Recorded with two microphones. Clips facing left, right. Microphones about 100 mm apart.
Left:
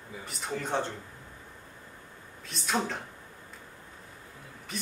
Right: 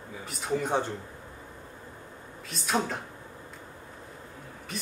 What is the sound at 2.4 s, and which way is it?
Speech, centre (ahead or behind).